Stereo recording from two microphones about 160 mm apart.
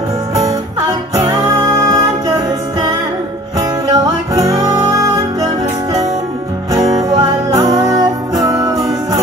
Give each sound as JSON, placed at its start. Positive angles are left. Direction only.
{"t": 1.2, "sound": "music", "side_deg": -25}
{"t": 3.9, "sound": "music", "side_deg": -25}
{"t": 6.7, "sound": "music", "side_deg": -25}